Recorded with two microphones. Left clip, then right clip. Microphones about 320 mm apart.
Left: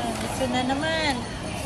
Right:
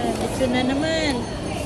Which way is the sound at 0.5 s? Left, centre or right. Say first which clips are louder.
Right 3 dB; centre.